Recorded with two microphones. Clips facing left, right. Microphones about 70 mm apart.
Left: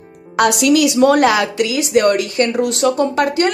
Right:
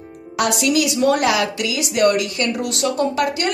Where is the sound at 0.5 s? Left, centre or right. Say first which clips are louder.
Left 4 dB; left.